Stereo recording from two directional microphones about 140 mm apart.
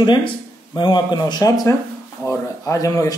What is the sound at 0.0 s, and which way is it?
Speech, 35° left (ahead or behind).